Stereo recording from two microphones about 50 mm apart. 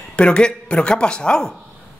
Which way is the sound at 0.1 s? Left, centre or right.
Centre.